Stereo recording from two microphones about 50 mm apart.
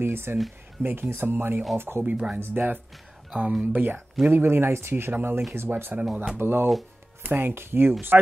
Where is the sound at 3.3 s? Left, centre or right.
Right.